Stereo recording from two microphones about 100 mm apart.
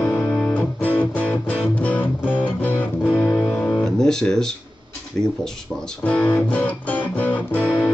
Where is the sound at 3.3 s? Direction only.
5° left (ahead or behind).